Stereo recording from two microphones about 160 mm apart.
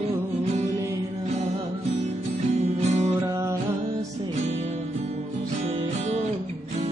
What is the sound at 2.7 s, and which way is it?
Music, 45° right (ahead or behind).